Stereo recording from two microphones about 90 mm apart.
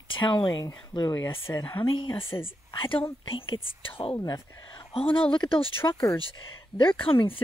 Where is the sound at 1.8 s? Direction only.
65° left (ahead or behind).